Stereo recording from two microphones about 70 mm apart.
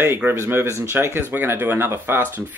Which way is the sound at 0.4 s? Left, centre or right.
Right.